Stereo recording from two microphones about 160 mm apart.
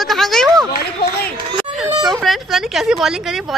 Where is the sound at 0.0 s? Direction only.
Centre (ahead or behind).